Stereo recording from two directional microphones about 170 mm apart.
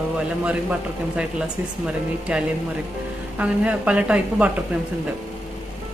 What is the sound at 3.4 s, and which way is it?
A woman's voice, 5° right (ahead or behind).